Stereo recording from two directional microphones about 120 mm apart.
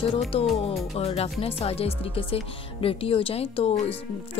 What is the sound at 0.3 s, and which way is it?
Speech, 55° left (ahead or behind).